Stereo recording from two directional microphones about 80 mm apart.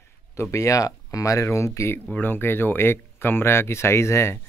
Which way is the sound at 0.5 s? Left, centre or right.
Left.